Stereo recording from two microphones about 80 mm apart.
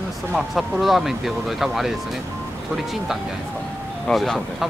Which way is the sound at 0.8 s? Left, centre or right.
Centre.